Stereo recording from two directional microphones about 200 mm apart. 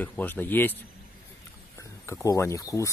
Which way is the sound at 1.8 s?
15° left (ahead or behind).